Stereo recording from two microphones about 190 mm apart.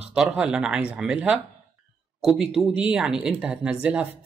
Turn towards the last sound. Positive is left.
turn(degrees=-5)  # may be behind; listen again after turning